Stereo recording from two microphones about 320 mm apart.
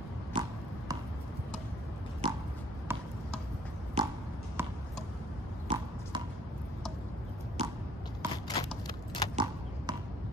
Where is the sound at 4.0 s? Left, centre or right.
Centre.